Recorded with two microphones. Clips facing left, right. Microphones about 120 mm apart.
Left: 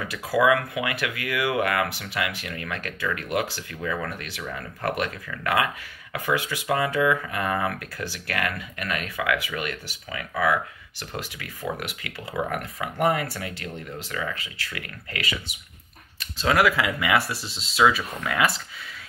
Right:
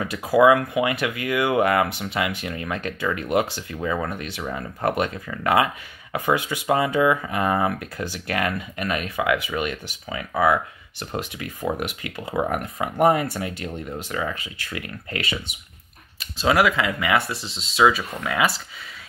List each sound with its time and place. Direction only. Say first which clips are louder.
0.0 s speech: right 5 dB; 25° right (ahead or behind)
16.2 s speech: right 2 dB; 10° right (ahead or behind)
16.6 s speech: right 1 dB; 5° left (ahead or behind)